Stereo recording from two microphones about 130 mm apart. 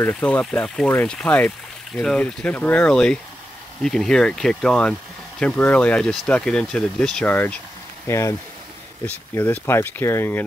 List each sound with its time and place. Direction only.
0.0 s speech: 10° left (ahead or behind)